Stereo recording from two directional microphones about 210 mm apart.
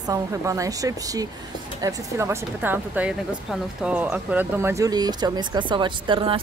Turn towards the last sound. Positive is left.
turn(degrees=-25)  # may be behind; listen again after turning